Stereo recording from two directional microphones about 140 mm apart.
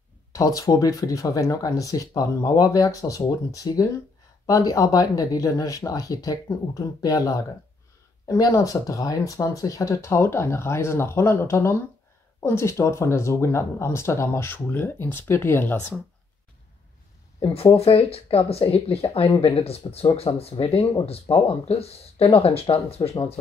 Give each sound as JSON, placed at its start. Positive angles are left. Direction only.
{"t": 0.3, "sound": "speech", "side_deg": 25}
{"t": 17.7, "sound": "speech", "side_deg": 45}